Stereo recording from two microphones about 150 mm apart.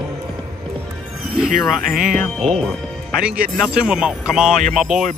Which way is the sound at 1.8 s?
70° right (ahead or behind).